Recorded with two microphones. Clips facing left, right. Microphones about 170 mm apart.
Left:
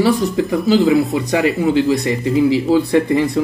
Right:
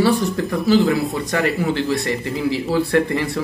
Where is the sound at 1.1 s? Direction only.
20° left (ahead or behind).